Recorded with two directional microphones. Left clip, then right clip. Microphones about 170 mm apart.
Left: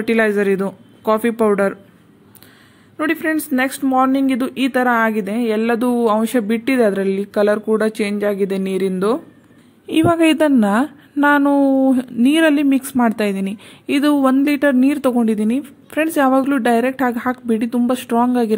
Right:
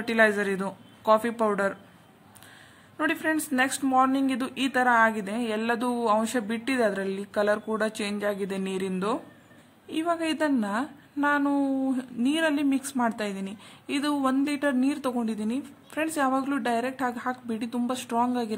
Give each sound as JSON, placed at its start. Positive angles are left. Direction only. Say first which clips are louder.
{"t": 0.0, "sound": "speech", "louder": "left 7 dB", "side_deg": 25}
{"t": 3.0, "sound": "speech", "louder": "left 7 dB", "side_deg": 20}
{"t": 9.8, "sound": "a woman's voice", "louder": "left 13 dB", "side_deg": 45}